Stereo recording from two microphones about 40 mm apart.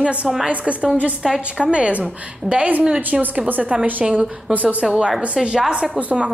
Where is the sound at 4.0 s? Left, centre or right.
Right.